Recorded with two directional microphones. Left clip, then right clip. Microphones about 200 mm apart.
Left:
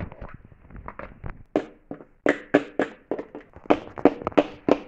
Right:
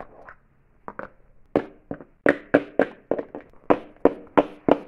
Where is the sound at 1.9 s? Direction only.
20° right (ahead or behind).